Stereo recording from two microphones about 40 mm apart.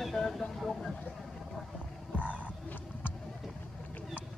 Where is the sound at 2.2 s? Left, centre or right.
Right.